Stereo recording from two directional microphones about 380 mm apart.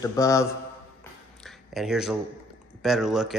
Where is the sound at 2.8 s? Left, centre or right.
Centre.